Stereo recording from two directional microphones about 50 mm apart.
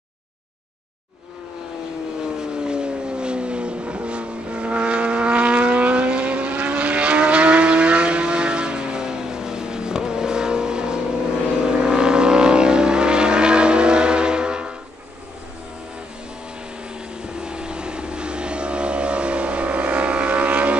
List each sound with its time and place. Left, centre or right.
2.4 s vehicle: centre
17.4 s vehicle: centre